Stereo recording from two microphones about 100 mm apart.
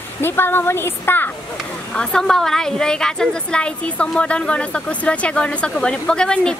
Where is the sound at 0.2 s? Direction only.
20° left (ahead or behind).